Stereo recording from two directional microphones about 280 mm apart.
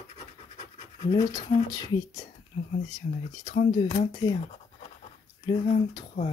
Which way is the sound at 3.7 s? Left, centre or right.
Centre.